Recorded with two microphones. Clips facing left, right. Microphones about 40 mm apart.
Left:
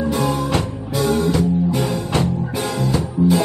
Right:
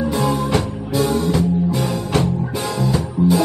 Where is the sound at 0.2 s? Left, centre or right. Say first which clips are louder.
Right 1 dB; left.